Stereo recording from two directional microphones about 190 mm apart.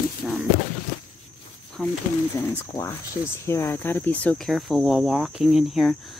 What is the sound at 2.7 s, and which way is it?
Speech, 20° left (ahead or behind).